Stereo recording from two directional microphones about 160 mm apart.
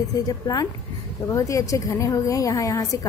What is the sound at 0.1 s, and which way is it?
A woman's voice, 25° left (ahead or behind).